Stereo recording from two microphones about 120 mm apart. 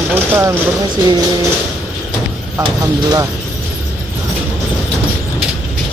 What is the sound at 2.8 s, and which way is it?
Speech, 30° right (ahead or behind).